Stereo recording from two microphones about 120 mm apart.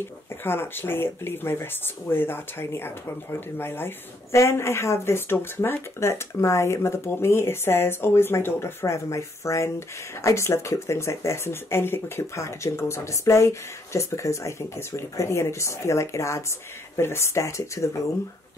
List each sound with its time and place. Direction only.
0.4 s speech: 20° left (ahead or behind)